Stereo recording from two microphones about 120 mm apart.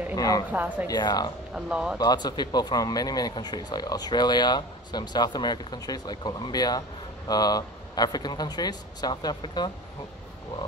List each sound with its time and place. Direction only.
0.1 s a woman's voice: 30° left (ahead or behind)
0.5 s speech: 15° right (ahead or behind)
0.8 s speech: 35° left (ahead or behind)
1.5 s speech: 10° right (ahead or behind)
2.0 s speech: 35° left (ahead or behind)